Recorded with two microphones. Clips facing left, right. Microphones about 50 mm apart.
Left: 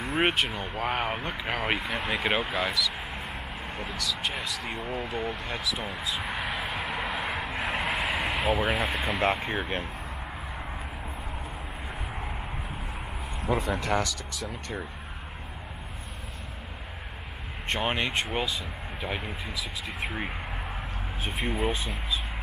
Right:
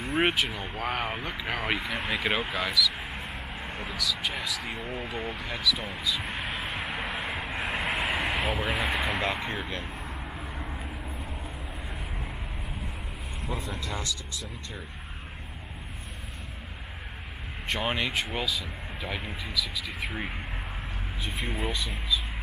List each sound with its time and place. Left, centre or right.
0.0 s speech: centre
6.5 s vehicle: centre
9.2 s speech: centre
9.6 s speech: left
13.5 s speech: left
17.6 s speech: centre